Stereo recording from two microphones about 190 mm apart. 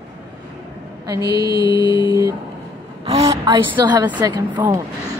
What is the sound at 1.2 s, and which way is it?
Mantra, 60° right (ahead or behind).